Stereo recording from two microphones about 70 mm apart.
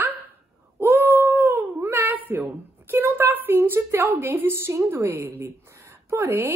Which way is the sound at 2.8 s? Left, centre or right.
Right.